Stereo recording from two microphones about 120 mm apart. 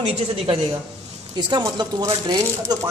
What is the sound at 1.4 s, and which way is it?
Speech, 35° right (ahead or behind).